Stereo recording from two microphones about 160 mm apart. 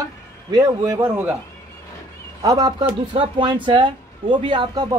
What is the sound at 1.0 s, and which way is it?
Speech, 15° right (ahead or behind).